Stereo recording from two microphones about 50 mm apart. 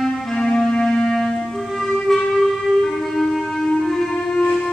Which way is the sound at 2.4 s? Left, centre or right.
Centre.